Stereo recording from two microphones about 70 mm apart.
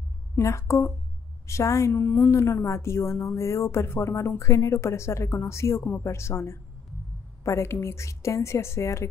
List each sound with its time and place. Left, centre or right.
0.4 s a woman's voice: left